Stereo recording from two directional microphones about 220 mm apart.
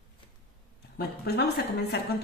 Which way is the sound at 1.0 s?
50° left (ahead or behind).